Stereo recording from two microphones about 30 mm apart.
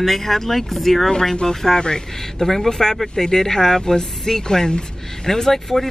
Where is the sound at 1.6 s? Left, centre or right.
Left.